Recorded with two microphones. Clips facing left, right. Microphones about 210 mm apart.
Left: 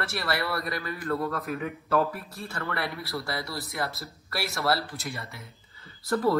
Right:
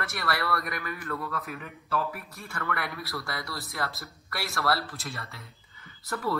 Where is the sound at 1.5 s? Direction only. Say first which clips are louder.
Left 8 dB; 50° left (ahead or behind); by 5.0 s 25° left (ahead or behind).